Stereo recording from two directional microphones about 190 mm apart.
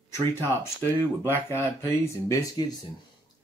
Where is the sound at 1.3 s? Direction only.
10° left (ahead or behind).